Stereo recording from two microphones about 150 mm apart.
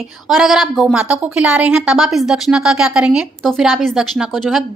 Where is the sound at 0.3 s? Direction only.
Centre (ahead or behind).